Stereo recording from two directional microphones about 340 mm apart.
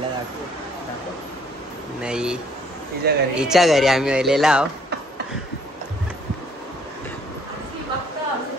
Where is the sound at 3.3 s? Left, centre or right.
Centre.